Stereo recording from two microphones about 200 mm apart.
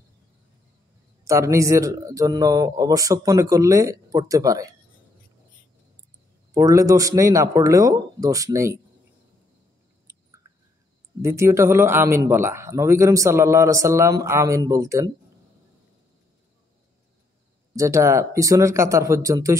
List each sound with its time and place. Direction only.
1.2 s a man's voice: 15° right (ahead or behind)
6.5 s a man's voice: 15° right (ahead or behind)
11.2 s a man's voice: 15° right (ahead or behind)
17.7 s a man's voice: 15° right (ahead or behind)